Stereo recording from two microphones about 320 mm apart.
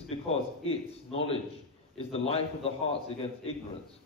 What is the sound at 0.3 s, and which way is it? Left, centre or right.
A man's voice, centre.